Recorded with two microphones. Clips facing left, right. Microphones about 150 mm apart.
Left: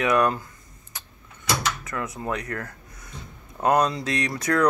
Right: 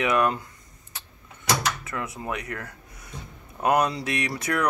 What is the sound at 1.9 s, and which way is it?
Speech, 25° right (ahead or behind).